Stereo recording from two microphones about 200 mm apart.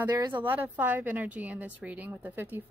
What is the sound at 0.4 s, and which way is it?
A woman's voice, 10° right (ahead or behind).